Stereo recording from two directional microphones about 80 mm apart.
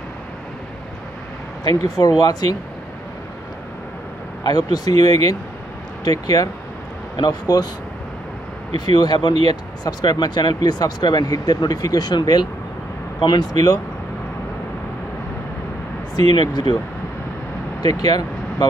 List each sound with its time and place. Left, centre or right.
1.6 s speech: left
4.4 s speech: left
8.7 s speech: left
11.2 s speech: left
16.2 s speech: left
17.7 s speech: left